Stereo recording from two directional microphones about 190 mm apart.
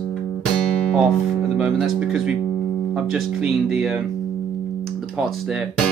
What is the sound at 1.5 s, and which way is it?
Speech, centre (ahead or behind).